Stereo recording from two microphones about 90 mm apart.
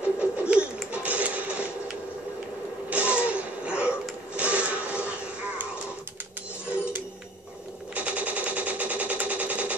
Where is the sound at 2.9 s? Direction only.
15° right (ahead or behind).